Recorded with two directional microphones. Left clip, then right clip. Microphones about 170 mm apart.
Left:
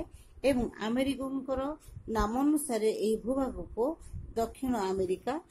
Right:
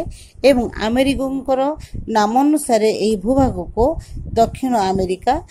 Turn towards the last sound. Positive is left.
turn(degrees=-40)  # may be behind; listen again after turning